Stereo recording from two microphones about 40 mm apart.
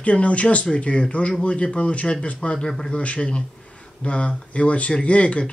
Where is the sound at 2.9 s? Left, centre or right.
Left.